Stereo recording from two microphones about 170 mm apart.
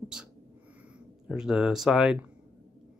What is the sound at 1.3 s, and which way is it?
Speech, 5° right (ahead or behind).